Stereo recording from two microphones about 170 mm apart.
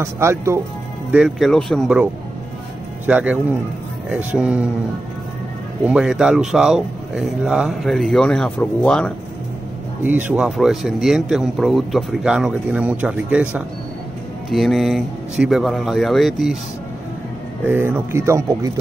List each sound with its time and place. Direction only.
0.0 s speech: 15° right (ahead or behind)
1.1 s speech: centre (ahead or behind)
3.1 s speech: 10° right (ahead or behind)
5.9 s speech: 5° right (ahead or behind)
10.0 s speech: 10° right (ahead or behind)
17.6 s speech: 10° right (ahead or behind)